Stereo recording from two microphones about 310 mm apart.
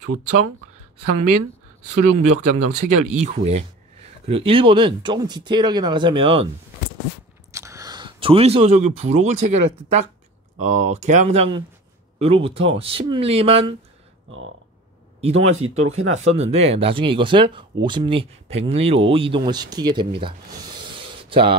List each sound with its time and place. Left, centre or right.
0.0 s speech: right
3.2 s speech: right
7.5 s speech: centre
15.1 s speech: centre
20.2 s a sound: centre